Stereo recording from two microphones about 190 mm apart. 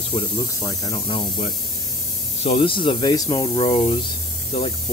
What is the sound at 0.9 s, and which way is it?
Speech, 30° left (ahead or behind).